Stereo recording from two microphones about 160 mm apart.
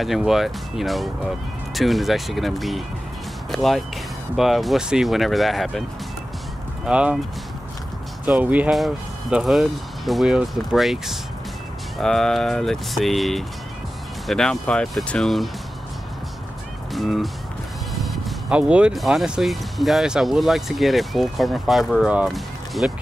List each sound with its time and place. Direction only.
0.0 s speech: centre (ahead or behind)
6.9 s speech: 5° right (ahead or behind)
8.3 s speech: 10° right (ahead or behind)
16.9 s speech: centre (ahead or behind)